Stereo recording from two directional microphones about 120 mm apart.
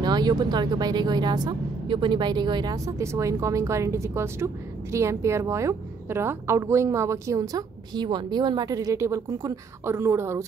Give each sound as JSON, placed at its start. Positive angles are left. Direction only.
{"t": 0.0, "sound": "a woman's voice", "side_deg": -35}